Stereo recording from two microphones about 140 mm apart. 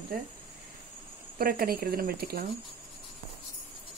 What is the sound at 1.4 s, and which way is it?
Speech, 90° right.